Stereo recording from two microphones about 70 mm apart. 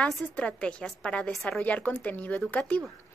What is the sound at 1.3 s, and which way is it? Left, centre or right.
Speech, centre.